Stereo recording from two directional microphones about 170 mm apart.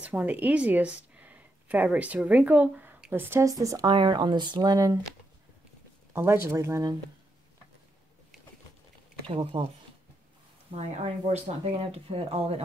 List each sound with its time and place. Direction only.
0.0 s speech: 10° right (ahead or behind)
6.1 s speech: 15° right (ahead or behind)
9.3 s speech: 35° right (ahead or behind)
10.8 s speech: 40° right (ahead or behind)